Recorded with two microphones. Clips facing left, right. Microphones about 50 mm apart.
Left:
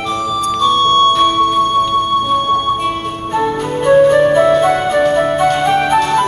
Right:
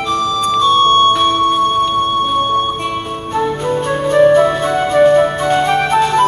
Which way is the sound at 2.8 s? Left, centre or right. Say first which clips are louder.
Left 2 dB; centre.